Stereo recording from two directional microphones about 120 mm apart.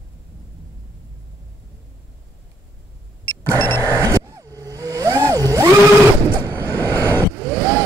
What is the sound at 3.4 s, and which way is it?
Vehicle, 15° left (ahead or behind).